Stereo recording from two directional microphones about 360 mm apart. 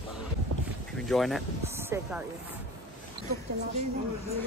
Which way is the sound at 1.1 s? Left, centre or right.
Centre.